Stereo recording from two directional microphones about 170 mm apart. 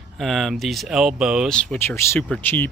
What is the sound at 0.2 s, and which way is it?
Speech, centre (ahead or behind).